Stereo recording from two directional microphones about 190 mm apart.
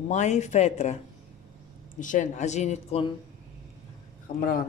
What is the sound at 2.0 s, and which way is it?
Speech, 40° left (ahead or behind).